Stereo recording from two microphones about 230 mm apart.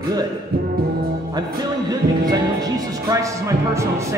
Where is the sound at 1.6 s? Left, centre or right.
Centre.